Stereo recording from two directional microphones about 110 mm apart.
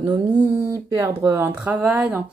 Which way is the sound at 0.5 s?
25° right (ahead or behind).